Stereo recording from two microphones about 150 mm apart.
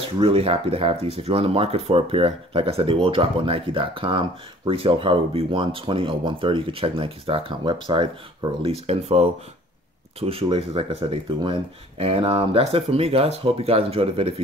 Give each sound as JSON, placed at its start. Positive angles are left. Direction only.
{"t": 0.2, "sound": "speech", "side_deg": -40}